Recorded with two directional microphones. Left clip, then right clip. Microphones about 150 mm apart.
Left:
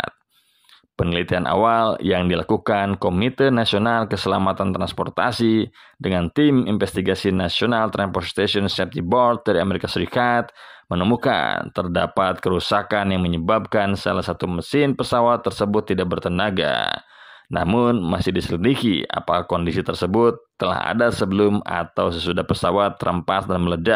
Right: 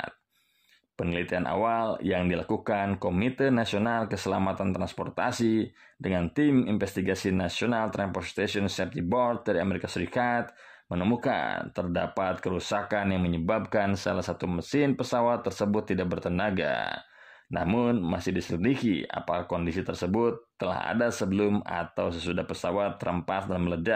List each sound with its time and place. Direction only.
0.9 s speech: 30° left (ahead or behind)
20.6 s speech: 25° left (ahead or behind)